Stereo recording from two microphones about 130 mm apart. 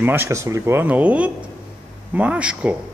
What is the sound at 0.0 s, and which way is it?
Speech, 15° right (ahead or behind).